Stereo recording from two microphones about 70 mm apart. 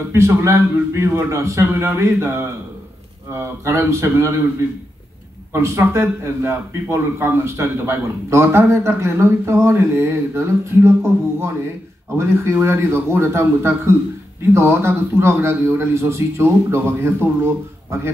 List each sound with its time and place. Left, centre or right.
0.1 s a man's voice: right
5.5 s a man's voice: right